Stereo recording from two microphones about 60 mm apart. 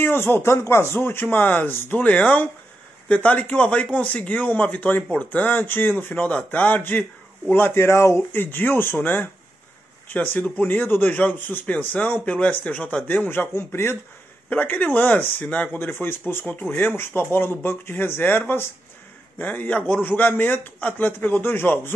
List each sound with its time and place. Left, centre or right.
0.0 s speech: left
1.9 s speech: left
4.7 s speech: left
5.0 s speech: left
10.4 s speech: centre
10.7 s speech: left
13.3 s speech: left
14.5 s speech: left